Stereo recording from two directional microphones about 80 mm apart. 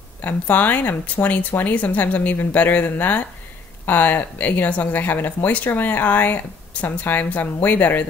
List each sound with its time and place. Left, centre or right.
0.2 s speech: left